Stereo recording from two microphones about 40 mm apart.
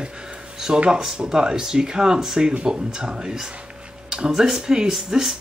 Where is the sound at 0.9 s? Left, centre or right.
Centre.